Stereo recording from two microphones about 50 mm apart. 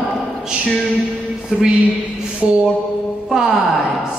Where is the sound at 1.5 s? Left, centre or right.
Centre.